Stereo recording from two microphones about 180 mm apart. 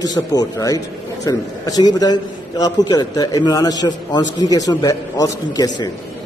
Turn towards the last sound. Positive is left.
turn(degrees=20)  # may be behind; listen again after turning